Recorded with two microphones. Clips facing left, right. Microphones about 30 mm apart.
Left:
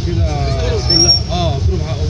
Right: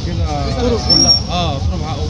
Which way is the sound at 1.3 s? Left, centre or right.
Right.